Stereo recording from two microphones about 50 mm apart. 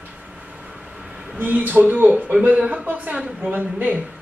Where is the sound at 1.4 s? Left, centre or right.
Right.